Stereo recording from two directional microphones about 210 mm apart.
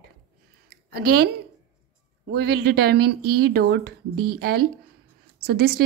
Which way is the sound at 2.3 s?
50° right (ahead or behind).